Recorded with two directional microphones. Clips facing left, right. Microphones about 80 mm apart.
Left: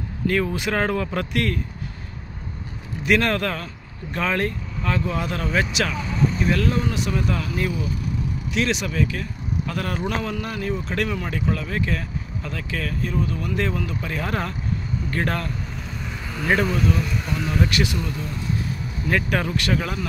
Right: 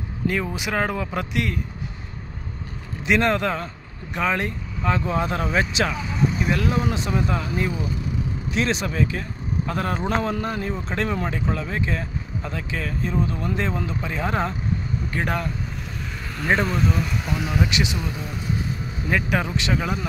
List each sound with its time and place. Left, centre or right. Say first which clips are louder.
0.3 s speech: left 3 dB; centre
3.1 s a man's voice: even; right
5.9 s a man's voice: even; centre
16.6 s speech: left 1 dB; centre